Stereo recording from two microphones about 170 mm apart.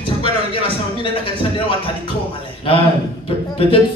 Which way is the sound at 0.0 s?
30° left (ahead or behind).